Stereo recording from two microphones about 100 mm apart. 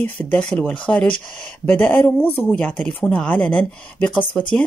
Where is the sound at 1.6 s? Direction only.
20° left (ahead or behind).